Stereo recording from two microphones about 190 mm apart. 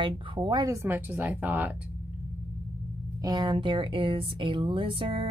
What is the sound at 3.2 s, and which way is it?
Speech, 20° right (ahead or behind).